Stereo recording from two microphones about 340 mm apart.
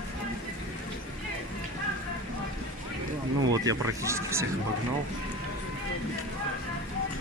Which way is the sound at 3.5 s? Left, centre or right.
Centre.